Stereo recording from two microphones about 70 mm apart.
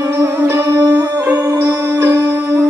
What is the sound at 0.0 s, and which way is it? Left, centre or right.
Music, right.